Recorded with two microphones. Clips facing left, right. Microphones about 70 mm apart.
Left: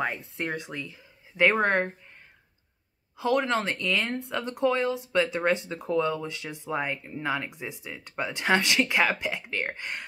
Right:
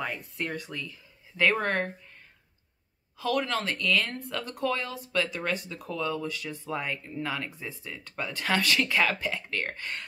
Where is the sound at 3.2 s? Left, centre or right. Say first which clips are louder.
Left 3 dB; left.